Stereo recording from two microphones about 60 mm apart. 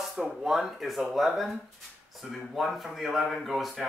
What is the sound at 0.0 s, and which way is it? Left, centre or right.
Speech, centre.